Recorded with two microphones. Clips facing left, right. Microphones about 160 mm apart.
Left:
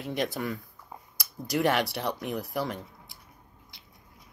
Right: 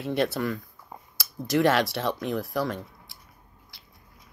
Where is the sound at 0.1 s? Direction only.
15° left (ahead or behind).